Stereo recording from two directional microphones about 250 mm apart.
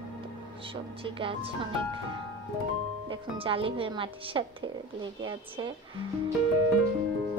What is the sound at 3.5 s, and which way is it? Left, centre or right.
Speech, right.